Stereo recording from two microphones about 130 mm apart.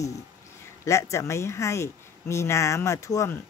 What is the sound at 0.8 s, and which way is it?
Speech, 20° left (ahead or behind).